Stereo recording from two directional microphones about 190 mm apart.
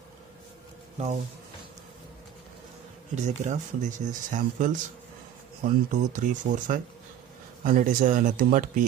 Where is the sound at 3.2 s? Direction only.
40° right (ahead or behind).